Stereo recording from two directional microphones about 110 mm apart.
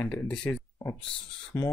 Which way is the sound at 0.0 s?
10° left (ahead or behind).